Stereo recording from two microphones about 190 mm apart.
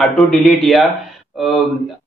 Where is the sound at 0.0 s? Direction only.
Centre (ahead or behind).